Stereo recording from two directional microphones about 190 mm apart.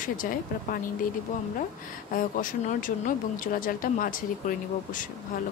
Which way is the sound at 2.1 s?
45° left (ahead or behind).